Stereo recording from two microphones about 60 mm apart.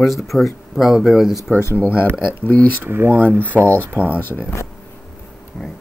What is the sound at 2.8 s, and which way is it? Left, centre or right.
Speech, right.